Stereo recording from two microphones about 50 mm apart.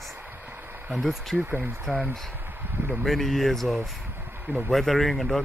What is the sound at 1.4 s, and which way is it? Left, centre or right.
Speech, right.